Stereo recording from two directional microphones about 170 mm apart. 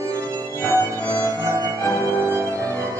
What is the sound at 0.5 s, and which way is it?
Music, 15° left (ahead or behind).